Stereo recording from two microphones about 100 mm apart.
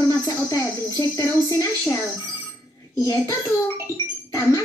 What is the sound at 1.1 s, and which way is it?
Child singing, 30° left (ahead or behind).